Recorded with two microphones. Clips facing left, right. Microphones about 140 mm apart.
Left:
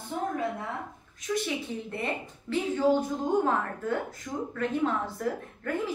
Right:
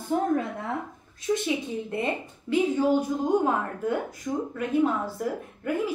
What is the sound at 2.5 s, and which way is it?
A woman's voice, 10° right (ahead or behind).